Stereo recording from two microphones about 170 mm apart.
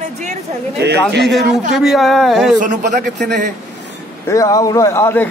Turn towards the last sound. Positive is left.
turn(degrees=15)  # may be behind; listen again after turning